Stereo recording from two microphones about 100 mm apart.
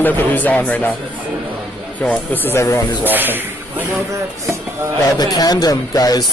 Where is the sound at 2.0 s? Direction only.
20° left (ahead or behind).